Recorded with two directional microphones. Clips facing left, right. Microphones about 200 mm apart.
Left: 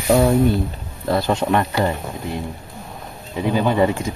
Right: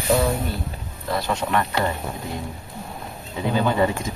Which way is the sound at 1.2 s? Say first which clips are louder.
Left 5 dB; 25° left (ahead or behind).